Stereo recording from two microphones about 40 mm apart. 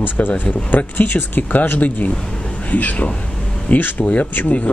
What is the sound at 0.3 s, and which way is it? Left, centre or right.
Speech, left.